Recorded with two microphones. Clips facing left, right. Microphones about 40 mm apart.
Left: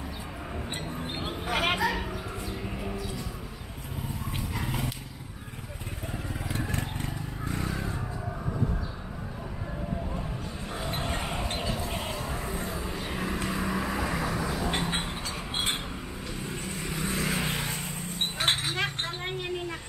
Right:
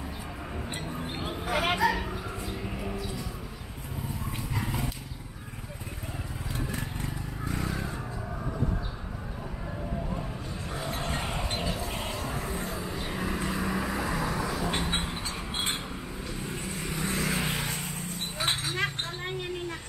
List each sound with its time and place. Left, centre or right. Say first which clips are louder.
1.2 s a sound: even; centre
1.8 s bow-wow: right 2 dB; centre
2.6 s music: even; centre
4.6 s dog: right 1 dB; centre
7.4 s vehicle: even; centre
11.1 s wind chime: even; centre
11.5 s vehicle: even; centre
18.4 s a sound: left 2 dB; left
18.7 s chink: even; left